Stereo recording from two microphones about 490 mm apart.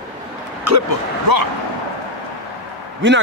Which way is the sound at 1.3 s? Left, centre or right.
Right.